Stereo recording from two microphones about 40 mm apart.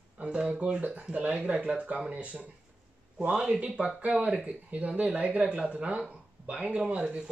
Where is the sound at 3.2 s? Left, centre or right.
Right.